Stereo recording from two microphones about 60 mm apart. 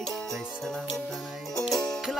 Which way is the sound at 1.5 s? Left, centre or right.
Centre.